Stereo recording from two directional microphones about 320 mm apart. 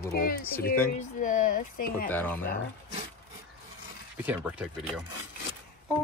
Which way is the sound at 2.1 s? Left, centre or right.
Centre.